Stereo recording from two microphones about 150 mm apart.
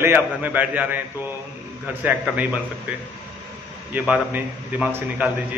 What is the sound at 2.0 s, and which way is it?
Speech, 10° right (ahead or behind).